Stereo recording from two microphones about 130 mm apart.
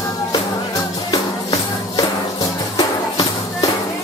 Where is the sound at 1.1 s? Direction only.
30° left (ahead or behind).